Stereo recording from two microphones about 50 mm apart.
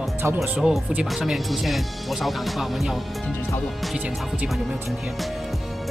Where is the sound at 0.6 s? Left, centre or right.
Right.